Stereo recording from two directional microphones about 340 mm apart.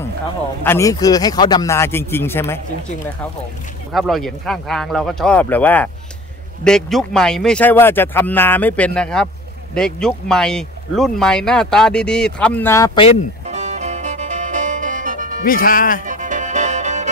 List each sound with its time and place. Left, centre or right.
0.7 s speech: centre
3.9 s speech: centre
13.5 s music: centre
15.4 s speech: left
16.1 s music: right